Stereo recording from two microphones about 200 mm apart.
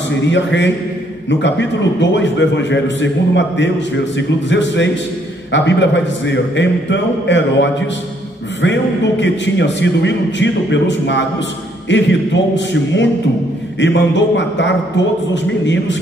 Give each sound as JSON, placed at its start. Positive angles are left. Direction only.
{"t": 0.2, "sound": "a man's voice", "side_deg": 60}
{"t": 9.2, "sound": "a man's voice", "side_deg": 60}